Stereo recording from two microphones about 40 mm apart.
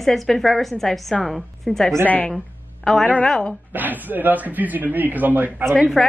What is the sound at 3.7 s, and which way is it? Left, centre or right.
Speech, right.